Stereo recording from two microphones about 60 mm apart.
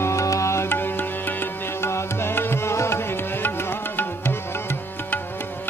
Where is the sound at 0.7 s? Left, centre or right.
Left.